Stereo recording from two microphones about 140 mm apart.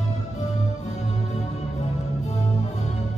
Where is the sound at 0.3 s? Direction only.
55° left (ahead or behind).